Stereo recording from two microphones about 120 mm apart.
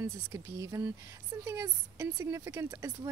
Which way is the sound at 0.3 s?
25° right (ahead or behind).